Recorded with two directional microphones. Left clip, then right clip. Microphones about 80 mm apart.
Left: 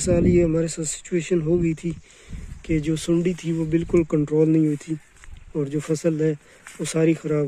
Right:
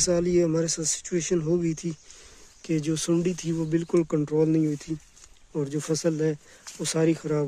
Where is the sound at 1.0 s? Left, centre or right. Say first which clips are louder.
Left 5 dB; centre.